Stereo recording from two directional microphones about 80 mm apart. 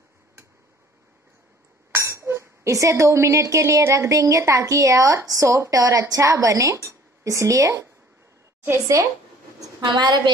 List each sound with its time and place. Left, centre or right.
2.0 s a woman's voice: right
9.8 s a woman's voice: right